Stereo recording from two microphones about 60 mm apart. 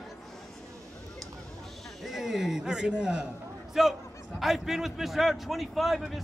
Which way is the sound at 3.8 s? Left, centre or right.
Centre.